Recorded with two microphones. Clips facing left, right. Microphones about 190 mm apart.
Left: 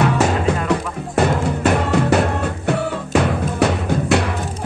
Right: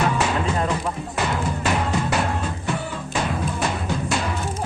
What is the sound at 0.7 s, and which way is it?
Music, 55° left (ahead or behind).